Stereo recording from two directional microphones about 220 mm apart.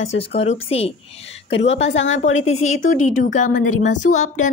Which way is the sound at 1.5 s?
55° left (ahead or behind).